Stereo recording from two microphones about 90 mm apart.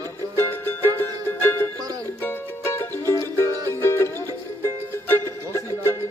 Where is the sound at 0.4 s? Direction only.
25° left (ahead or behind).